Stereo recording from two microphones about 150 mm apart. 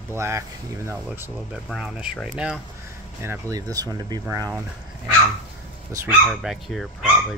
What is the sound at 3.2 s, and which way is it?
Speech, 20° right (ahead or behind).